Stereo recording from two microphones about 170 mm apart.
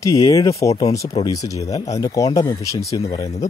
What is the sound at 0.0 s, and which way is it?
A man's voice, 20° left (ahead or behind).